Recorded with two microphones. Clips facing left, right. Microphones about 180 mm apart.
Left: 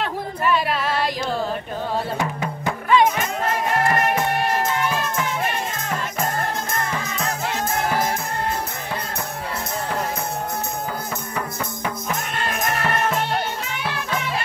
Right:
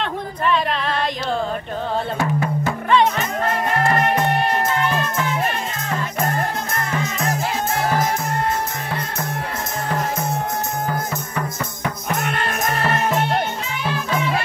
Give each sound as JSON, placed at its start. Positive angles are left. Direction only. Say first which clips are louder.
{"t": 2.1, "sound": "music", "louder": "right 4 dB", "side_deg": 15}
{"t": 12.2, "sound": "music", "louder": "right 4 dB", "side_deg": -60}